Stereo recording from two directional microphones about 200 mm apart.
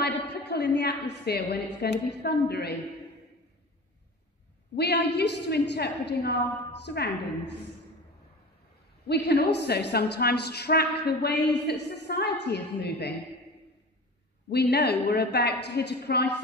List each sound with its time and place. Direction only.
0.3 s a woman's voice: 55° left (ahead or behind)
4.7 s a woman's voice: 55° left (ahead or behind)
9.0 s a woman's voice: 55° left (ahead or behind)
14.5 s a woman's voice: 55° left (ahead or behind)